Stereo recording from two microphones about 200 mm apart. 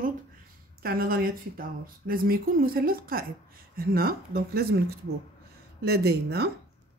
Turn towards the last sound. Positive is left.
turn(degrees=-55)  # may be behind; listen again after turning